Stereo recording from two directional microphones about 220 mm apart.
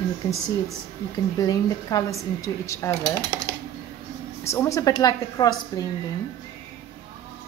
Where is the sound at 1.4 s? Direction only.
15° left (ahead or behind).